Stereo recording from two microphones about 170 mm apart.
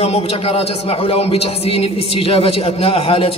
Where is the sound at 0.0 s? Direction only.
35° left (ahead or behind).